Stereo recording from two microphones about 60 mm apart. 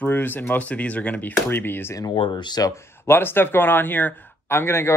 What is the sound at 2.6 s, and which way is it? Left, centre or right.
Speech, left.